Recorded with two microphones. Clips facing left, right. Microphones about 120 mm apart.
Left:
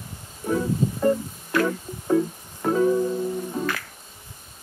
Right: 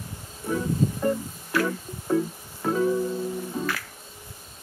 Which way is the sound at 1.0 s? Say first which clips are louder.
Left 4 dB; centre (ahead or behind).